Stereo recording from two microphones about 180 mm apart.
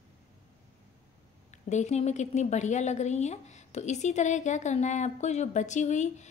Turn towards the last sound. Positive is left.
turn(degrees=40)  # may be behind; listen again after turning